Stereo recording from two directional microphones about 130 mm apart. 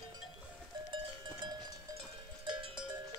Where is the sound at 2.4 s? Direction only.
40° right (ahead or behind).